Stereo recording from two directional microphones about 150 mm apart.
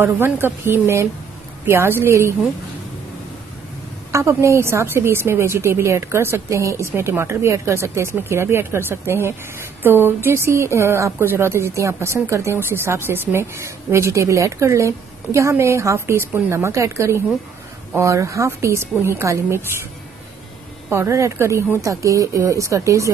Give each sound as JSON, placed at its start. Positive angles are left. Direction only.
{"t": 0.0, "sound": "a woman's voice", "side_deg": -15}
{"t": 4.1, "sound": "a woman's voice", "side_deg": -20}
{"t": 20.9, "sound": "speech", "side_deg": -20}